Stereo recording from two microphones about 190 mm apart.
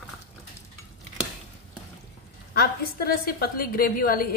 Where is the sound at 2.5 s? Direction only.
50° left (ahead or behind).